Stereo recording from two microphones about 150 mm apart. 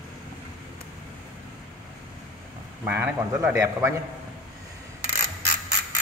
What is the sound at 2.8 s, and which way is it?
A man's voice, 10° right (ahead or behind).